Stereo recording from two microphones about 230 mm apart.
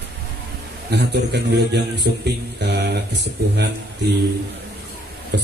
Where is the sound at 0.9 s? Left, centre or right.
Right.